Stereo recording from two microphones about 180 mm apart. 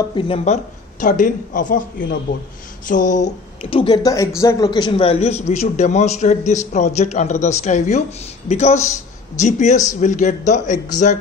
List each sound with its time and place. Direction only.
0.1 s a man's voice: 30° left (ahead or behind)
0.9 s a man's voice: 45° left (ahead or behind)
3.8 s a man's voice: 20° left (ahead or behind); by 10.8 s 40° left (ahead or behind)